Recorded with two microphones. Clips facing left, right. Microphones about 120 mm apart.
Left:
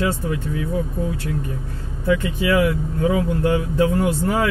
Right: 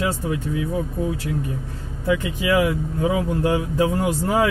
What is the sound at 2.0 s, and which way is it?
Speech, 15° right (ahead or behind).